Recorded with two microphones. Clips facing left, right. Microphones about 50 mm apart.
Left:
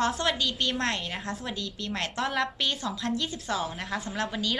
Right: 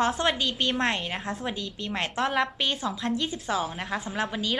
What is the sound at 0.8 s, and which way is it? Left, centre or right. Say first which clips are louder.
A woman's voice: right 3 dB; centre.